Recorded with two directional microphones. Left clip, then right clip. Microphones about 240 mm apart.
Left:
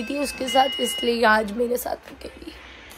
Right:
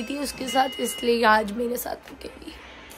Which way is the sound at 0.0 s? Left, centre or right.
Centre.